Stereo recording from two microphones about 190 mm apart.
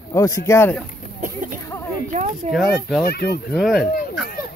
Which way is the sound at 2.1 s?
40° right (ahead or behind).